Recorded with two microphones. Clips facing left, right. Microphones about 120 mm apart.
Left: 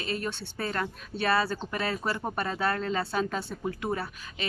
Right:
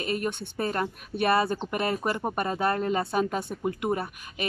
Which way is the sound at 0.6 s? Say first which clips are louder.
Right 3 dB; 20° right (ahead or behind).